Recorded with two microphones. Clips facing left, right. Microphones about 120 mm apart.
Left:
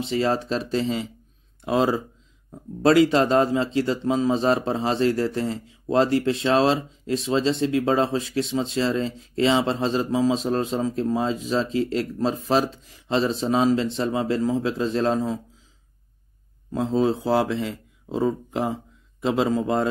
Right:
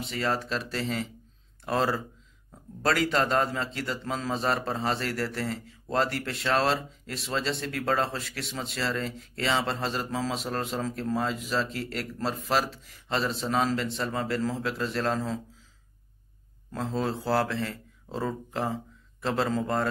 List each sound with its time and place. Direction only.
0.1 s speech: 25° left (ahead or behind)
16.9 s a man's voice: 20° left (ahead or behind)